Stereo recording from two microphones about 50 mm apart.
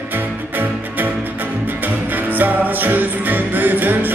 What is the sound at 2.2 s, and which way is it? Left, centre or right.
Music, right.